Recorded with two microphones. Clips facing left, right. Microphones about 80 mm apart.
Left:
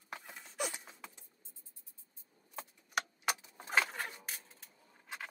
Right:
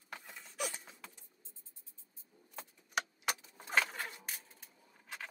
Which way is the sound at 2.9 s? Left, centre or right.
Centre.